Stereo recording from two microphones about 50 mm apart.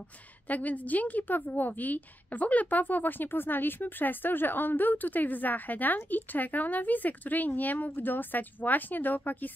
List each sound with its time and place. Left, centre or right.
0.5 s a woman's voice: left